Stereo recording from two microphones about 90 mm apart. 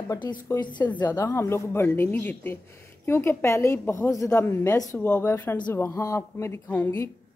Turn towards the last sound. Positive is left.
turn(degrees=25)  # may be behind; listen again after turning